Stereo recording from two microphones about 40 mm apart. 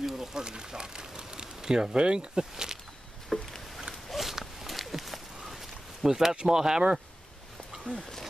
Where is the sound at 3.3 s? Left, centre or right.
Centre.